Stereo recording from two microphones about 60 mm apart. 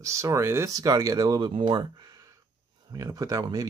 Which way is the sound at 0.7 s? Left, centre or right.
Right.